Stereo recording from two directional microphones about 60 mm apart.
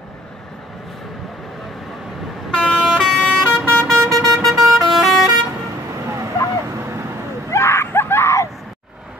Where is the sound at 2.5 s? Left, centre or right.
Centre.